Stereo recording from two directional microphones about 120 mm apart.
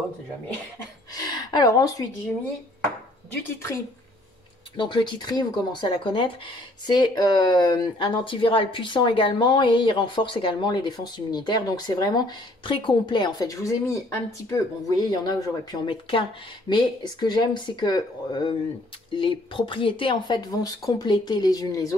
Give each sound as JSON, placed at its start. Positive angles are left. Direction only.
{"t": 1.1, "sound": "speech", "side_deg": 30}
{"t": 3.4, "sound": "a woman's voice", "side_deg": 25}
{"t": 4.7, "sound": "speech", "side_deg": 40}